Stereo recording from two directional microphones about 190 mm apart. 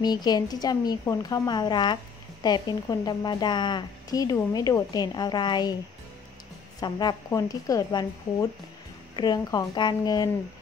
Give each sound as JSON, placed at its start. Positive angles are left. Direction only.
{"t": 0.0, "sound": "a woman's voice", "side_deg": 20}
{"t": 6.8, "sound": "a woman's voice", "side_deg": 20}